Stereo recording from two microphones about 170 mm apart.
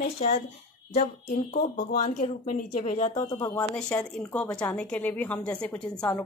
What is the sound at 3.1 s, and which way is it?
A woman's voice, 15° left (ahead or behind).